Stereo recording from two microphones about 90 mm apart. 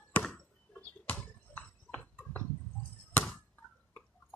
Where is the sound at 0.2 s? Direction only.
15° left (ahead or behind).